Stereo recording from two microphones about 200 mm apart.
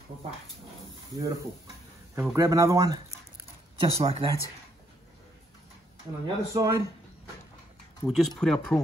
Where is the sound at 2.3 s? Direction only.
15° right (ahead or behind).